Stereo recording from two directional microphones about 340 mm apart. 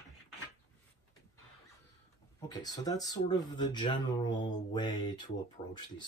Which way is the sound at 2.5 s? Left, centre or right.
Centre.